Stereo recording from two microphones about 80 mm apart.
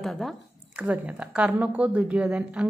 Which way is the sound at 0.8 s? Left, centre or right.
Centre.